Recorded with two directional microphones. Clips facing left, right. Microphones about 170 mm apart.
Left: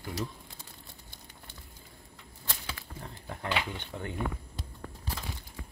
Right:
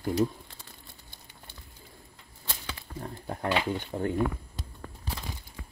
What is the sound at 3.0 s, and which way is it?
Speech, 40° right (ahead or behind).